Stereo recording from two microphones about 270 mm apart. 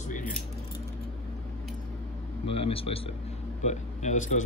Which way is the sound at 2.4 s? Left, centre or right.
Left.